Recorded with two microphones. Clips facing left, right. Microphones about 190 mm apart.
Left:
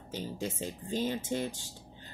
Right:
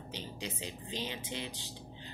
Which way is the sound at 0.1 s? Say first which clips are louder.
Left 7 dB; 45° left (ahead or behind).